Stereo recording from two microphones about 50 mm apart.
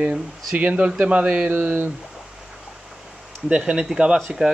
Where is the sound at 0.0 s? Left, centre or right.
Right.